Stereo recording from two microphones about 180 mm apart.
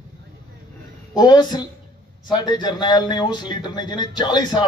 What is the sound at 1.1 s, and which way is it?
A man's voice, 25° left (ahead or behind).